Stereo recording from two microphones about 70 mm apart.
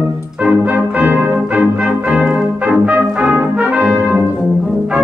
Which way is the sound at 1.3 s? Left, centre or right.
Centre.